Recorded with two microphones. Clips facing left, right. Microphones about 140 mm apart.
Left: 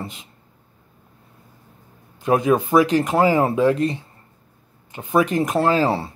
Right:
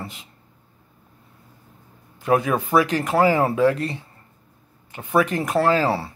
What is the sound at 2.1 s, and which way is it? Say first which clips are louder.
Speech: left 3 dB; 20° left (ahead or behind).